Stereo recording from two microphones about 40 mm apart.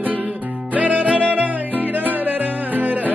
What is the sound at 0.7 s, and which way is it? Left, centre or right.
Music, right.